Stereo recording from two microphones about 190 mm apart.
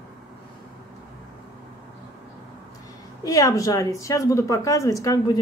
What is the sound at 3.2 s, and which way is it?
A woman's voice, 15° left (ahead or behind).